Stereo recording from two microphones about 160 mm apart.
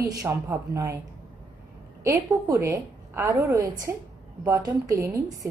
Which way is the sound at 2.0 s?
20° right (ahead or behind).